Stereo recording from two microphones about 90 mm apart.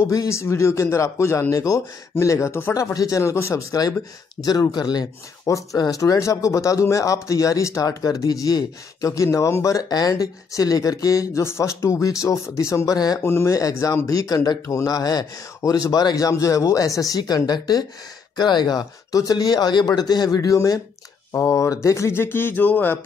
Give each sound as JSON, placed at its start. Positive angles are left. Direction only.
{"t": 0.0, "sound": "speech", "side_deg": 35}
{"t": 4.4, "sound": "speech", "side_deg": 45}
{"t": 13.2, "sound": "speech", "side_deg": 30}